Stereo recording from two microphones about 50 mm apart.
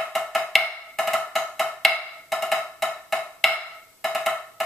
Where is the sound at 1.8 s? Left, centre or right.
Centre.